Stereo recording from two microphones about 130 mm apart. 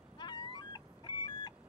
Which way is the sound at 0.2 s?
35° left (ahead or behind).